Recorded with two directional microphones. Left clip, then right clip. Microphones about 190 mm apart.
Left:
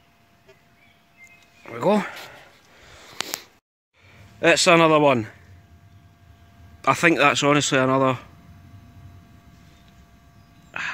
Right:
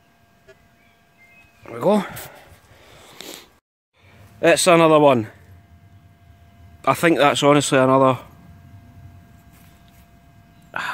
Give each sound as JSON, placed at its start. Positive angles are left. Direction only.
{"t": 1.6, "sound": "a sound", "side_deg": -10}
{"t": 4.1, "sound": "speech", "side_deg": -5}
{"t": 6.8, "sound": "speech", "side_deg": -10}